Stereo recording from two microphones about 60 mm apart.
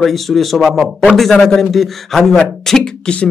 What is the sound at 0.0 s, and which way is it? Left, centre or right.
A man's voice, centre.